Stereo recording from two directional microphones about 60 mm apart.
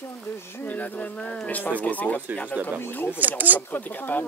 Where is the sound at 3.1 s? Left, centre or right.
Right.